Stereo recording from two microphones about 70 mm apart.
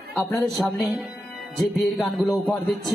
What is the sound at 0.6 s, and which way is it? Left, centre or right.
Music, centre.